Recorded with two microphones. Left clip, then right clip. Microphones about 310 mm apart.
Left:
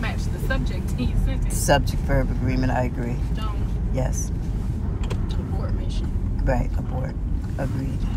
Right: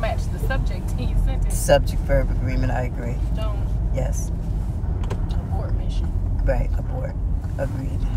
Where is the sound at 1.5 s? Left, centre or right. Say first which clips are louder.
Right 3 dB; centre.